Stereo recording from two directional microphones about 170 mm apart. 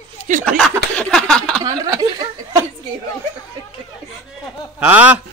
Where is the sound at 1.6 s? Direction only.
20° right (ahead or behind).